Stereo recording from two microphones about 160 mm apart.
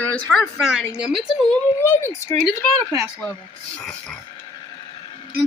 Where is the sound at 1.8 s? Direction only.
15° left (ahead or behind).